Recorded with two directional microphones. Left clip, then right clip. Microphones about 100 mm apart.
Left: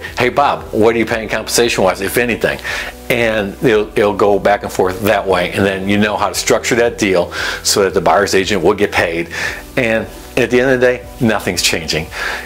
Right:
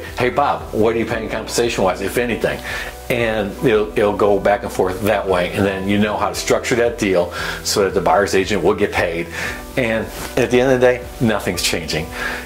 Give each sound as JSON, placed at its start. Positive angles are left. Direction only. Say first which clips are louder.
{"t": 0.2, "sound": "speech", "louder": "left 4 dB", "side_deg": 45}